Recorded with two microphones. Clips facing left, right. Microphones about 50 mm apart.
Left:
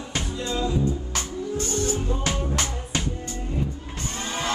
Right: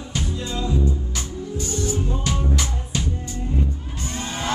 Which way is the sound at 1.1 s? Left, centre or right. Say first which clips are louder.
Left 1 dB; left.